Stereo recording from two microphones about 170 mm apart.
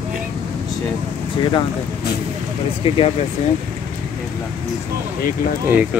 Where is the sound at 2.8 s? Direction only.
35° left (ahead or behind).